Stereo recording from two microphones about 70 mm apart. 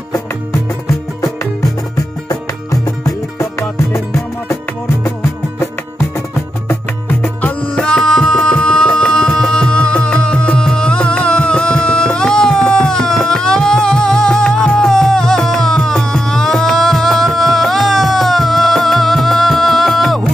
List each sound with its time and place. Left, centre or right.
0.1 s music: left
2.2 s music: left
6.7 s music: left
7.6 s music: centre